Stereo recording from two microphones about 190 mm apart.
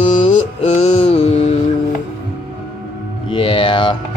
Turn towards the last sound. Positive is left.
turn(degrees=25)  # may be behind; listen again after turning